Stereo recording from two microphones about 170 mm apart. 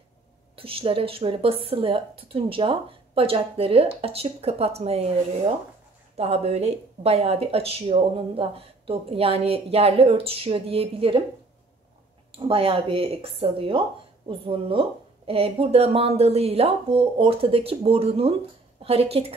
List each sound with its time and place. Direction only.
0.6 s speech: 35° right (ahead or behind)
6.1 s speech: 35° right (ahead or behind)
12.3 s speech: 30° right (ahead or behind)